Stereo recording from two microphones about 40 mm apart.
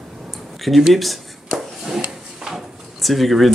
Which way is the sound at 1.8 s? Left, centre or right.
Centre.